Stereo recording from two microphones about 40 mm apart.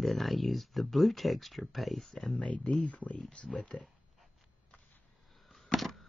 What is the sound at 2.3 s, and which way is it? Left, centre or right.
Speech, left.